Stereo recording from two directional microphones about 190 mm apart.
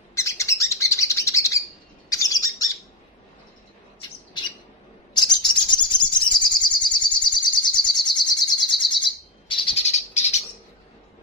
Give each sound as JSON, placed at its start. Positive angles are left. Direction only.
{"t": 0.1, "sound": "bird", "side_deg": 15}
{"t": 5.1, "sound": "bird", "side_deg": 20}